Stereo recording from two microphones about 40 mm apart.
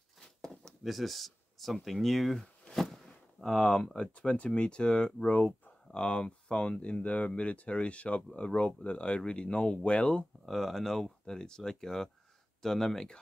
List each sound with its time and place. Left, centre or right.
0.2 s a sound: centre
0.8 s speech: centre
2.7 s a sound: centre
3.4 s speech: centre
4.1 s speech: left
5.2 s speech: left
5.9 s speech: left
10.4 s speech: centre